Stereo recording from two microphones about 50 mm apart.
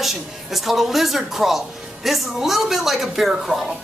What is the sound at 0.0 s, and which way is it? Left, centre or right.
Speech, centre.